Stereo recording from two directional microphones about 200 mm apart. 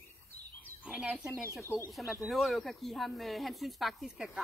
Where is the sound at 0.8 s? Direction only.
5° right (ahead or behind).